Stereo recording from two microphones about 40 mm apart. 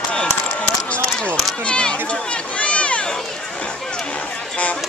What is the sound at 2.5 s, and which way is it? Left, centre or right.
Run, left.